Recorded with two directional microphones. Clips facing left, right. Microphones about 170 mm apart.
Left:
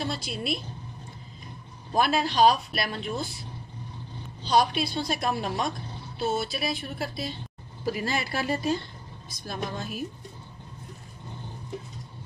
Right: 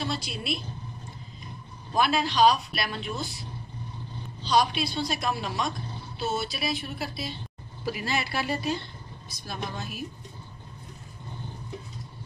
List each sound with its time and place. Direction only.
0.0 s speech: 45° left (ahead or behind)
2.0 s speech: 50° left (ahead or behind)
4.4 s speech: 50° left (ahead or behind)